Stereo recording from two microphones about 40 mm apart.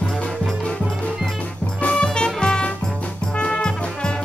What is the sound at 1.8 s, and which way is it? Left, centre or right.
Music, left.